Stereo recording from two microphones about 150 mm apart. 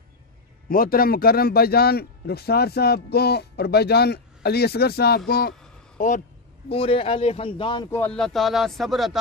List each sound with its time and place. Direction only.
0.7 s a man's voice: 75° left (ahead or behind); by 5.5 s 90° left
5.9 s speech: 60° left (ahead or behind)
6.7 s speech: 40° left (ahead or behind)
7.9 s speech: 10° left (ahead or behind)